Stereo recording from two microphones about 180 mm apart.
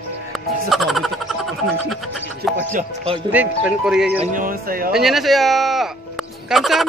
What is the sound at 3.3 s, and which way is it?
Speech, 10° right (ahead or behind).